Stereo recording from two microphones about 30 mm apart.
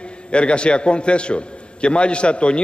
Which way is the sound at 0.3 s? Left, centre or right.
Left.